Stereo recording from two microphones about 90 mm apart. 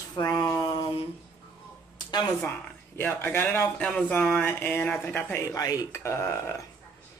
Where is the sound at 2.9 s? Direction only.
25° left (ahead or behind).